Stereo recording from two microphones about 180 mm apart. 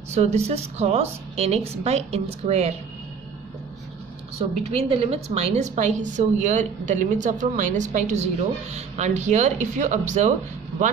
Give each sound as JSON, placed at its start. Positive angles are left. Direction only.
{"t": 0.1, "sound": "a woman's voice", "side_deg": -40}
{"t": 4.7, "sound": "a woman's voice", "side_deg": -30}